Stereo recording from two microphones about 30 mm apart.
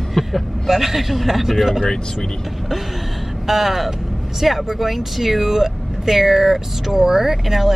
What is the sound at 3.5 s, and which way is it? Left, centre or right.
Speech, centre.